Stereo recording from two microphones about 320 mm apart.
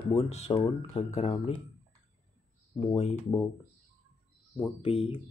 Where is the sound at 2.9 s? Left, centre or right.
Centre.